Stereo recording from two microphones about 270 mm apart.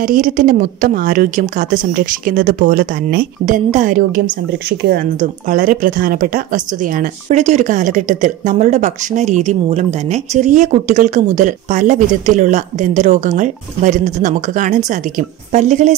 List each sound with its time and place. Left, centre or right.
0.0 s a woman's voice: right